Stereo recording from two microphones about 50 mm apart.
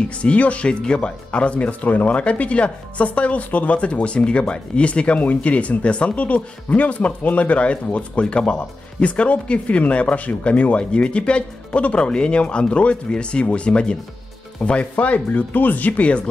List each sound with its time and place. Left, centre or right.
0.2 s speech: left